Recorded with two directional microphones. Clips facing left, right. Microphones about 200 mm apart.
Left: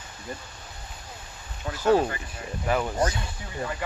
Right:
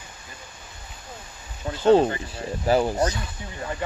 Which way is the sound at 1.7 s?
25° right (ahead or behind).